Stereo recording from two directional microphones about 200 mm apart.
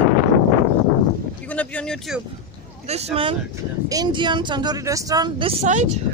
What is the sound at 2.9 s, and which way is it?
Speech, 30° right (ahead or behind).